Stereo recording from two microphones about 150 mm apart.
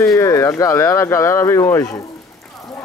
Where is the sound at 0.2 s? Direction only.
20° left (ahead or behind).